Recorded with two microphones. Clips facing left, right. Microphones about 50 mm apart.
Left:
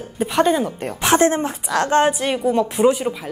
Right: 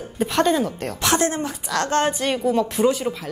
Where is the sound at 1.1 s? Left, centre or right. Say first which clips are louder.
Left 5 dB; left.